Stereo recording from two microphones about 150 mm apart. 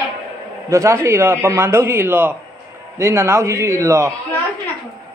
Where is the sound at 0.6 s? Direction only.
20° right (ahead or behind).